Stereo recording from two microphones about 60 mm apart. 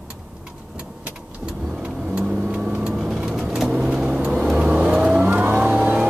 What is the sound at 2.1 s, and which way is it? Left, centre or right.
Vehicle, centre.